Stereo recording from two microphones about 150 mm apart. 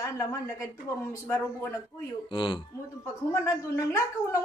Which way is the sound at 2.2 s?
35° left (ahead or behind).